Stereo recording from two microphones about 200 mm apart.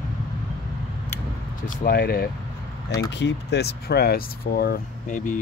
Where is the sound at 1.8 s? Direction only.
50° left (ahead or behind).